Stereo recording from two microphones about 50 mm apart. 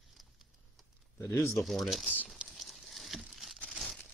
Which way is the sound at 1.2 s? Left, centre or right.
Left.